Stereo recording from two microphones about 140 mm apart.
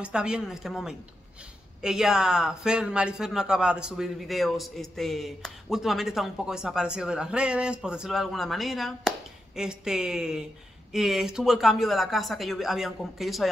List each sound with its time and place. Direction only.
0.0 s a man's voice: 5° right (ahead or behind)